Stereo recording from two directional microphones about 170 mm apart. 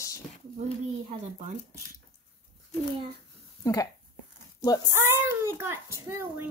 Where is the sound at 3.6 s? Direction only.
20° left (ahead or behind).